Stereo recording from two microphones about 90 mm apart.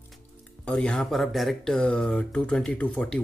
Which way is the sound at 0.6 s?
10° left (ahead or behind).